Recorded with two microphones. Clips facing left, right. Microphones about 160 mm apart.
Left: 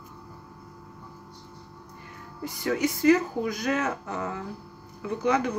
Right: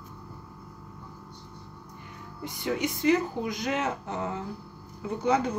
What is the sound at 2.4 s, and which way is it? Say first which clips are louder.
Speech: left 3 dB; 20° right (ahead or behind).